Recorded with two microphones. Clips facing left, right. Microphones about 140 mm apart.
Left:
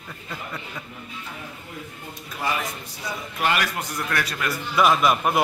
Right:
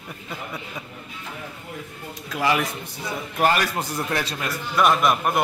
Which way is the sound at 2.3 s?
90° right.